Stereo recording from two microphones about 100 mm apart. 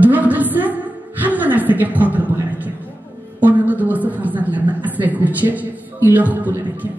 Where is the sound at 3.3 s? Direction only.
15° right (ahead or behind).